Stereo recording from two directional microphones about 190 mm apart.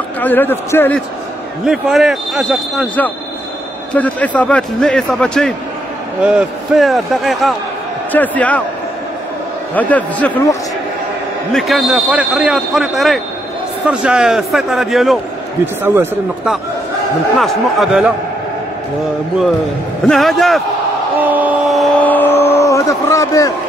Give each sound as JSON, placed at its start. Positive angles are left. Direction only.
{"t": 0.2, "sound": "a man's voice", "side_deg": 10}
{"t": 1.7, "sound": "a man's voice", "side_deg": 0}
{"t": 9.8, "sound": "a man's voice", "side_deg": 10}
{"t": 15.6, "sound": "speech", "side_deg": -10}
{"t": 17.4, "sound": "speech", "side_deg": 0}
{"t": 20.1, "sound": "speech", "side_deg": 0}
{"t": 21.2, "sound": "a sound", "side_deg": -10}
{"t": 22.0, "sound": "a sound", "side_deg": 10}